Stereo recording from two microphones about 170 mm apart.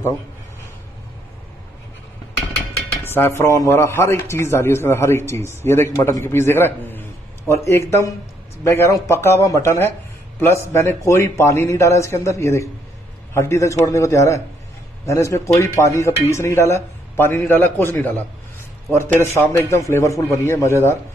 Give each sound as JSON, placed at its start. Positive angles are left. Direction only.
{"t": 3.0, "sound": "a man's voice", "side_deg": 15}